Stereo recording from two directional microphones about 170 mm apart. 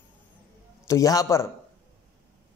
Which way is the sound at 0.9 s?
20° left (ahead or behind).